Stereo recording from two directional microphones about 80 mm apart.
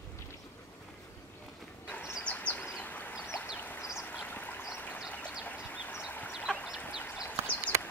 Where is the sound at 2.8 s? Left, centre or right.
Left.